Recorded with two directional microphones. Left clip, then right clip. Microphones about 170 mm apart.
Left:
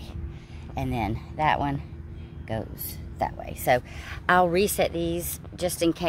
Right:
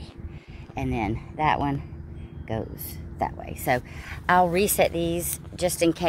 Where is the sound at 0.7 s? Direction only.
25° left (ahead or behind).